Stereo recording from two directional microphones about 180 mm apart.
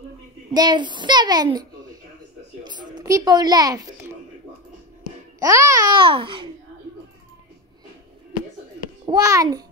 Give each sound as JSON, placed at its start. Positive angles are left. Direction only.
{"t": 0.5, "sound": "a child's voice", "side_deg": -25}
{"t": 2.6, "sound": "a woman's voice", "side_deg": -25}
{"t": 5.4, "sound": "a child's voice", "side_deg": -15}
{"t": 9.0, "sound": "a child's voice", "side_deg": -20}